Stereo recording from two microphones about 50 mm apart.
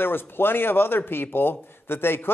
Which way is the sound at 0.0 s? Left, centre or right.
Left.